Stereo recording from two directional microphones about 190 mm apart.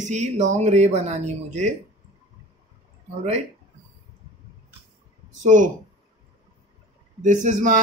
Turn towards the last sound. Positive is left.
turn(degrees=-40)  # may be behind; listen again after turning